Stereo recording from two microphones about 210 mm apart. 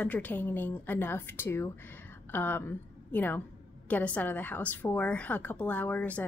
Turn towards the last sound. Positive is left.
turn(degrees=5)  # may be behind; listen again after turning